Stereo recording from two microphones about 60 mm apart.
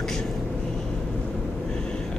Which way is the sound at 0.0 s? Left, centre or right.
Centre.